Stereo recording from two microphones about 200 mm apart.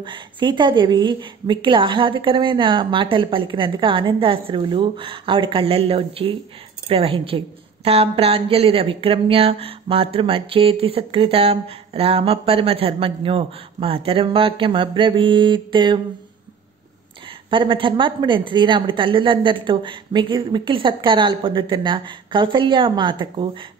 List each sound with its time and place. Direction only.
0.0 s a woman's voice: 25° right (ahead or behind)
17.5 s a woman's voice: 25° right (ahead or behind)